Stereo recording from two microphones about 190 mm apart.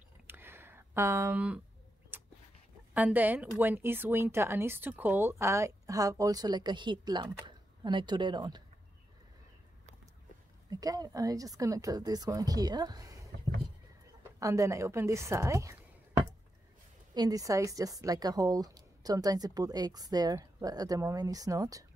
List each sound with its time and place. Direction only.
0.3 s a sound: 10° right (ahead or behind)
2.9 s a woman's voice: 10° right (ahead or behind)
10.7 s a woman's voice: 20° right (ahead or behind)
14.4 s a woman's voice: 15° right (ahead or behind)